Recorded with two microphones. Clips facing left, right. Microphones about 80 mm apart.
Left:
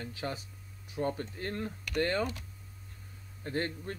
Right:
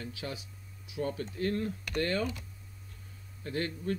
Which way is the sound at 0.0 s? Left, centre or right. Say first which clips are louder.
Left 2 dB; left.